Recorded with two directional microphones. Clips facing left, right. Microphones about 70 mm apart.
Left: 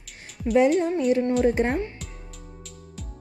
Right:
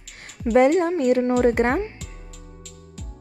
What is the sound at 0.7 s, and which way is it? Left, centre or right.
Speech, right.